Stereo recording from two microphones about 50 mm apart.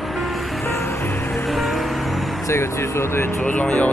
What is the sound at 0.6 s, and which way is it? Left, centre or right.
Music, left.